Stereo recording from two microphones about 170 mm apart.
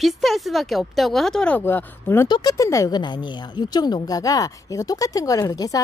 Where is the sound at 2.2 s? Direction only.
25° left (ahead or behind).